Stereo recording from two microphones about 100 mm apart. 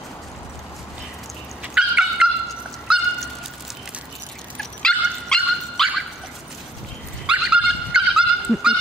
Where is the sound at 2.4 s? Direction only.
Centre (ahead or behind).